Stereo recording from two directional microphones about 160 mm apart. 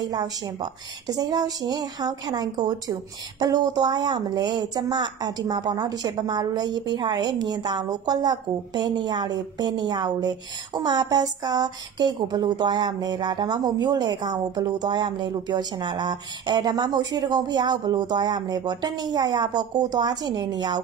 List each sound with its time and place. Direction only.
0.1 s a woman's voice: 25° right (ahead or behind)